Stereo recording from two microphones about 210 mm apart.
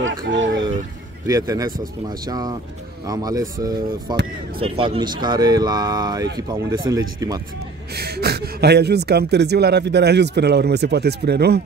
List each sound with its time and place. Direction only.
0.0 s speech: 60° right (ahead or behind)
1.2 s speech: 15° right (ahead or behind)
7.9 s speech: 50° right (ahead or behind)